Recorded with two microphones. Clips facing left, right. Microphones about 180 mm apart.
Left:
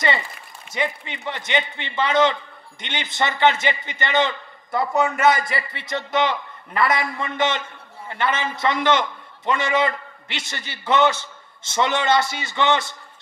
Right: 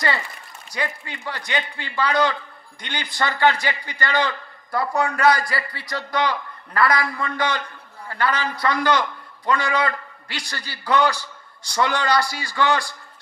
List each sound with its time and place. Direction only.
0.7 s a man's voice: 20° left (ahead or behind)